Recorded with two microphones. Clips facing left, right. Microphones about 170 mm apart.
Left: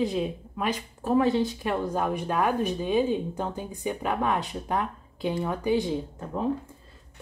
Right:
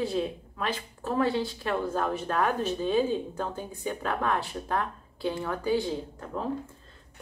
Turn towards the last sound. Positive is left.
turn(degrees=20)  # may be behind; listen again after turning